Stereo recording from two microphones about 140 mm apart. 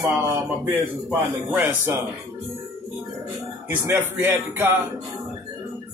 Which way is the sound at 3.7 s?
15° right (ahead or behind).